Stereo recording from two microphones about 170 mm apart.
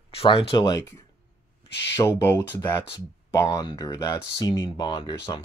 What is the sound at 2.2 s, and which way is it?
Speech, 15° left (ahead or behind).